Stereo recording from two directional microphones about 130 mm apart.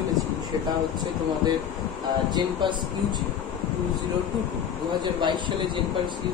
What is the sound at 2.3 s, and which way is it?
Speech, 35° right (ahead or behind).